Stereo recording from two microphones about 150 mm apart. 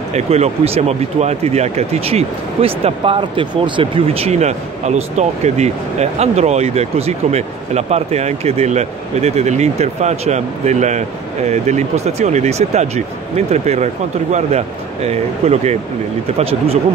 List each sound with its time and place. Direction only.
0.1 s speech: 45° right (ahead or behind)